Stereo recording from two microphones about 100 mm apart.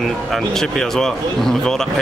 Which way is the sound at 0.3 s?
5° left (ahead or behind).